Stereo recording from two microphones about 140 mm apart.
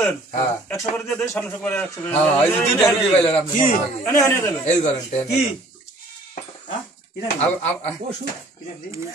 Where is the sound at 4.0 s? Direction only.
20° left (ahead or behind).